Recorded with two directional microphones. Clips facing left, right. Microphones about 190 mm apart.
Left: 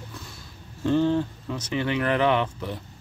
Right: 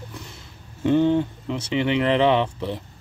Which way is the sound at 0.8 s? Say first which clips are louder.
Right 3 dB; 20° right (ahead or behind).